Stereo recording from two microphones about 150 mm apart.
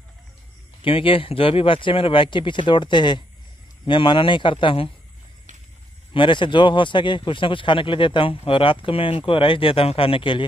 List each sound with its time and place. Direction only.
0.8 s a man's voice: 35° left (ahead or behind)
6.1 s a man's voice: 30° left (ahead or behind)